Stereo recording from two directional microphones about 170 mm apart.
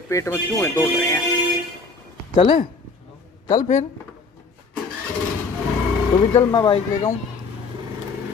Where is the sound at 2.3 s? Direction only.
35° left (ahead or behind).